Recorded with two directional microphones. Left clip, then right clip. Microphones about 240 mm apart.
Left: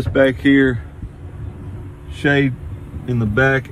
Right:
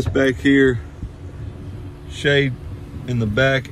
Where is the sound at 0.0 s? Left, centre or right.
Centre.